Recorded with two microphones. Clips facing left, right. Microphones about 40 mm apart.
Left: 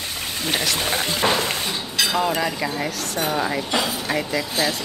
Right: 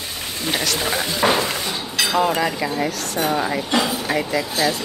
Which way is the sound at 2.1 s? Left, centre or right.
Centre.